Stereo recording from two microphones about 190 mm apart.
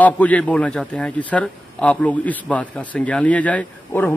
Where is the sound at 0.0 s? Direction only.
5° left (ahead or behind).